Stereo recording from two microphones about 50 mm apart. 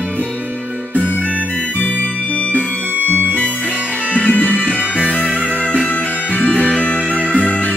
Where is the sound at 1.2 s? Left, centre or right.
Left.